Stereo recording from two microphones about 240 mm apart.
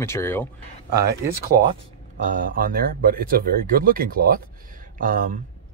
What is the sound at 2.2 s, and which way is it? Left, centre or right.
Speech, right.